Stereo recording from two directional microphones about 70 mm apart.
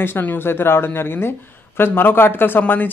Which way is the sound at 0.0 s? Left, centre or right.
Left.